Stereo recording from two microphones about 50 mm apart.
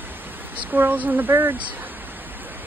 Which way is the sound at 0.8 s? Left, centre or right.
Right.